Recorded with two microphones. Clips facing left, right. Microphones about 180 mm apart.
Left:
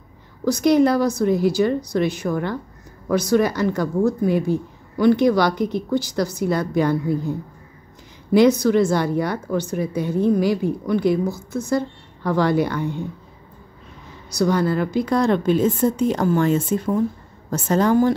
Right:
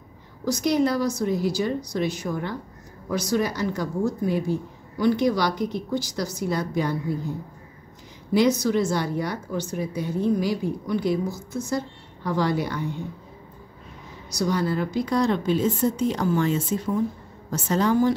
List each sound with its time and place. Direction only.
0.5 s a woman's voice: 60° left (ahead or behind)
8.3 s a woman's voice: 60° left (ahead or behind)
14.3 s a woman's voice: 55° left (ahead or behind)